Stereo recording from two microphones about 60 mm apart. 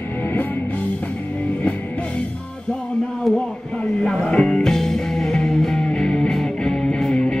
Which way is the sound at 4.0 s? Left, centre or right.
Centre.